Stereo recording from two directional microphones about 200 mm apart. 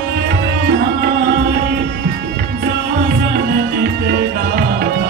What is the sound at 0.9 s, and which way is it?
Tabla, 55° right (ahead or behind).